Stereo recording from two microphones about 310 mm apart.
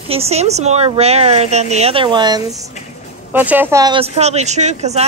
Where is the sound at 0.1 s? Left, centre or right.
Centre.